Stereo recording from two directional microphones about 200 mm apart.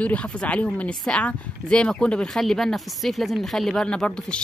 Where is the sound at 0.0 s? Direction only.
5° left (ahead or behind).